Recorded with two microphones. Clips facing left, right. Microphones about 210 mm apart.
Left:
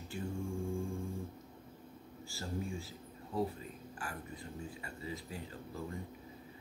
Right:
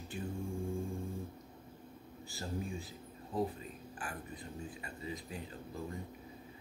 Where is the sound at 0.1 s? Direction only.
20° right (ahead or behind).